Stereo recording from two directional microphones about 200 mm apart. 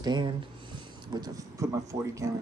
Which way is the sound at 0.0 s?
20° right (ahead or behind).